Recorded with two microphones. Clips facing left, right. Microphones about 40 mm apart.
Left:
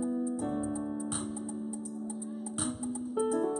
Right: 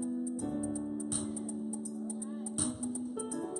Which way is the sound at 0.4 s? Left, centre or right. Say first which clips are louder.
Left 3 dB; left.